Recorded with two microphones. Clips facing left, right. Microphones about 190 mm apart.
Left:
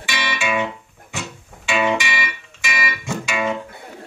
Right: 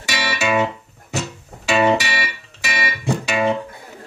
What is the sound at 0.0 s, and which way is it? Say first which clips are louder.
Music: right 2 dB; 40° right (ahead or behind).